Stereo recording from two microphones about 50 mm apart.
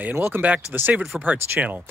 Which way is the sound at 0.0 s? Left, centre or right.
Right.